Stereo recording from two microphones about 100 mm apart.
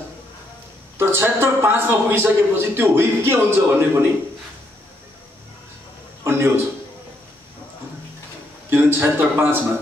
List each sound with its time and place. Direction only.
0.9 s a man's voice: 20° right (ahead or behind)
6.2 s a man's voice: 25° right (ahead or behind)
8.6 s a man's voice: 25° right (ahead or behind)